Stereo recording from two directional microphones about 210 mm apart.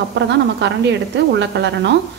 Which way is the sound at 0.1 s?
55° right (ahead or behind).